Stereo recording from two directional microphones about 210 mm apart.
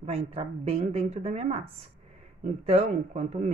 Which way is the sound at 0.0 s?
30° right (ahead or behind).